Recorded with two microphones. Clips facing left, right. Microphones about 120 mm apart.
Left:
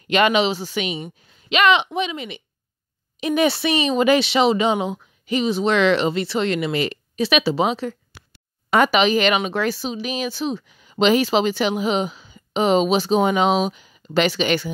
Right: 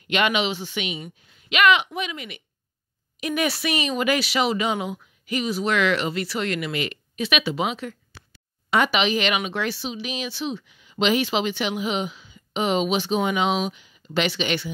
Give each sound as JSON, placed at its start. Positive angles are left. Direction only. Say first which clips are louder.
{"t": 0.1, "sound": "speech", "louder": "left 5 dB", "side_deg": 35}
{"t": 1.0, "sound": "speech", "louder": "left 4 dB", "side_deg": 25}
{"t": 8.6, "sound": "speech", "louder": "left 5 dB", "side_deg": 45}